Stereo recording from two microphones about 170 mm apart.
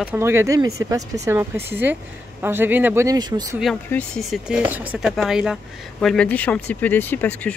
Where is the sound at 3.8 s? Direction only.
5° left (ahead or behind).